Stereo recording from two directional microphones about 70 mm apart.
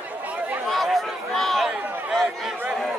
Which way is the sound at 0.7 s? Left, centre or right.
Centre.